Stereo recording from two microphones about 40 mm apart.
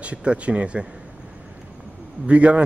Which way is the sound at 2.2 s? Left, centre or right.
Right.